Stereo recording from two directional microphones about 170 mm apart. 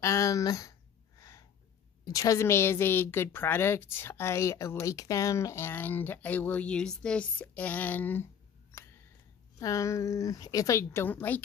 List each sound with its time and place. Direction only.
0.0 s a sound: 20° left (ahead or behind)
2.0 s a woman's voice: 20° left (ahead or behind)
9.6 s a woman's voice: 20° left (ahead or behind)